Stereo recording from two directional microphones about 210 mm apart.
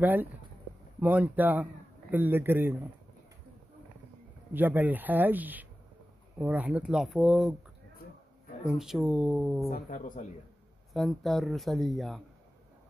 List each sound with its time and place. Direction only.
0.0 s speech: 10° right (ahead or behind)
4.6 s speech: 10° right (ahead or behind)
8.6 s speech: centre (ahead or behind)
9.7 s speech: 40° left (ahead or behind)
10.9 s speech: centre (ahead or behind)